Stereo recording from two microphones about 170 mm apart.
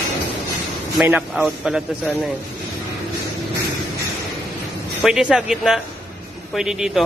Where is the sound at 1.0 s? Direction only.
5° right (ahead or behind).